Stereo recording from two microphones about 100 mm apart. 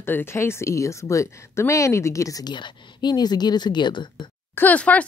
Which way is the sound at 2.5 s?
50° left (ahead or behind).